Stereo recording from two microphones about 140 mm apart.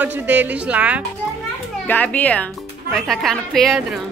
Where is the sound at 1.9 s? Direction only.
10° left (ahead or behind).